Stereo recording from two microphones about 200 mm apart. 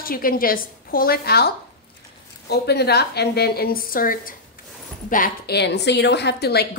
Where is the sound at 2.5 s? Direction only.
55° left (ahead or behind).